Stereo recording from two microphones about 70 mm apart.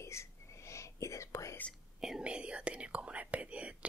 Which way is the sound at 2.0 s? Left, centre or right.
Centre.